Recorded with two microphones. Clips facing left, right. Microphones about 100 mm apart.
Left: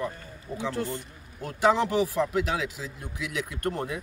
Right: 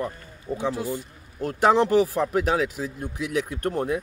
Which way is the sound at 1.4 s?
45° right (ahead or behind).